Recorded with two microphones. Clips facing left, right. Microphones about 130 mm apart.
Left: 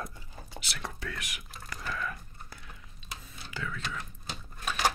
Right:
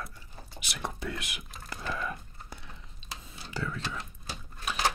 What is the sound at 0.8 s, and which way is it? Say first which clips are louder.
Speech: right 5 dB; 20° right (ahead or behind).